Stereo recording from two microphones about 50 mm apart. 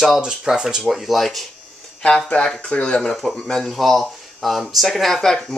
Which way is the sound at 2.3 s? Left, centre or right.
Left.